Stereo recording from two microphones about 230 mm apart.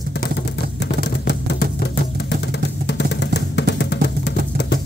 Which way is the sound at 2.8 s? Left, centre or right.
Left.